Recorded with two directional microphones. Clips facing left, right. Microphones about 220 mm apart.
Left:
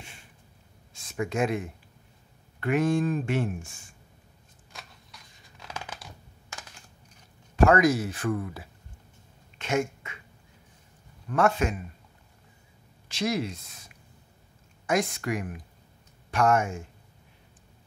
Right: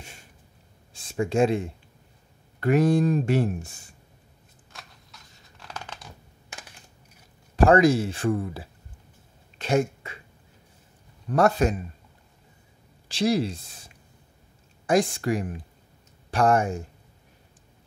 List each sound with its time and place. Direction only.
0.9 s speech: 30° right (ahead or behind)
4.7 s a sound: centre (ahead or behind)
5.7 s shuffling cards: 10° left (ahead or behind)
7.5 s speech: 30° right (ahead or behind)
9.6 s a sound: 35° right (ahead or behind)
11.2 s speech: 35° right (ahead or behind)
13.1 s speech: 30° right (ahead or behind)